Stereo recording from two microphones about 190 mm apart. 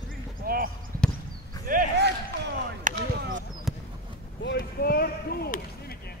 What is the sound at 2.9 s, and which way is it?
Basketball bounce, 40° right (ahead or behind).